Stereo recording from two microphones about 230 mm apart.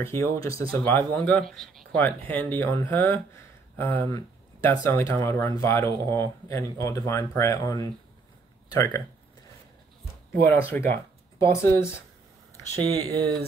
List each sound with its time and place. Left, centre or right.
0.0 s speech: centre
10.5 s speech: centre
12.7 s speech: centre